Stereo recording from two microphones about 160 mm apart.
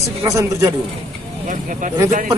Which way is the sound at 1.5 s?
55° right (ahead or behind).